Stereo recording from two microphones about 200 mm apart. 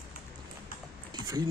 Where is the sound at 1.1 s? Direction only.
20° right (ahead or behind).